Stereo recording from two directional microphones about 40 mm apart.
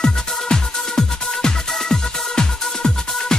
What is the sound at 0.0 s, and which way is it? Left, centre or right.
Music, centre.